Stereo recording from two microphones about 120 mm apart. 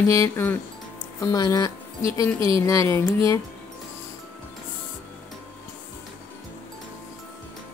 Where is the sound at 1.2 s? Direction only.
30° left (ahead or behind).